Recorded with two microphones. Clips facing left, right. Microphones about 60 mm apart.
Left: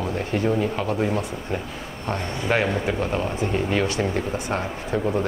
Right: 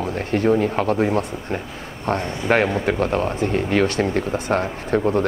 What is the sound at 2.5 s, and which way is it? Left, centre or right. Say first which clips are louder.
Speech: right 4 dB; right.